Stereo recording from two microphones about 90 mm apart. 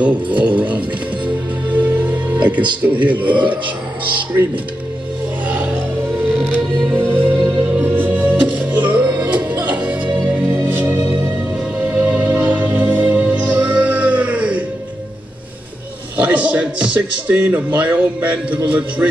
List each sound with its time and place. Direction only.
0.0 s music: 15° right (ahead or behind)
2.8 s speech: 20° right (ahead or behind)
3.3 s a man's voice: 65° right (ahead or behind)
5.5 s music: 15° right (ahead or behind)
7.2 s music: 15° right (ahead or behind)
16.2 s a man's voice: 15° right (ahead or behind)